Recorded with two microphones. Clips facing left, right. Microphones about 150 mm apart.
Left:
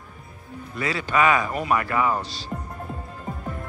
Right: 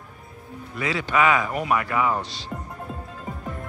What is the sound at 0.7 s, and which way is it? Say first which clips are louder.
Speech: even; 15° right (ahead or behind).